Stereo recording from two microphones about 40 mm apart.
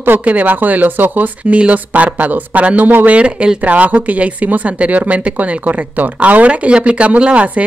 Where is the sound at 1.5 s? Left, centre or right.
Right.